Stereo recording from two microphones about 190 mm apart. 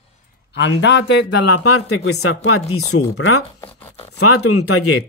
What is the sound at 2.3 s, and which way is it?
Speech, 70° left (ahead or behind).